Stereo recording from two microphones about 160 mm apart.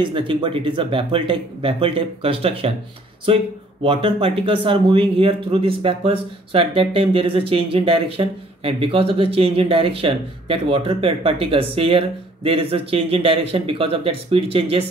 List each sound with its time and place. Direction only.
0.0 s speech: 30° right (ahead or behind)